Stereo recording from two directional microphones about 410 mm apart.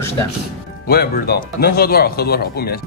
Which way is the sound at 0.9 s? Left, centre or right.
Left.